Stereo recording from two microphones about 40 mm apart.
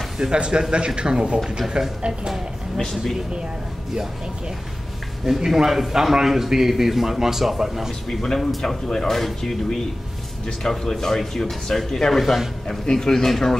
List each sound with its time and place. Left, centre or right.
0.3 s speech: right
2.8 s speech: centre
5.2 s a man's voice: centre
8.1 s speech: centre
12.6 s speech: centre